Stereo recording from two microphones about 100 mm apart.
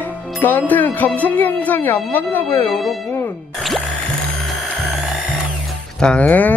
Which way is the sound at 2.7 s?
Centre (ahead or behind).